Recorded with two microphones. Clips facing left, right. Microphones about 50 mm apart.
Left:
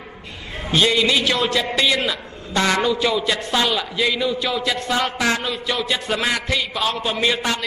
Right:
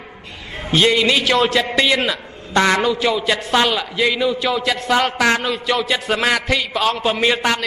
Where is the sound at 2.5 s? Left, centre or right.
Right.